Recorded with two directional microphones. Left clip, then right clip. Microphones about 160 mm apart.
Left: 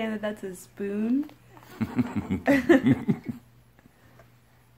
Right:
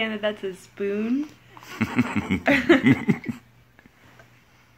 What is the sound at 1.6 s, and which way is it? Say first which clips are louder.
Speech: right 5 dB; 20° right (ahead or behind).